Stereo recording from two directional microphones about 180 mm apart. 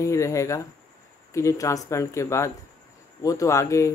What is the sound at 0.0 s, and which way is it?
Speech, 15° left (ahead or behind).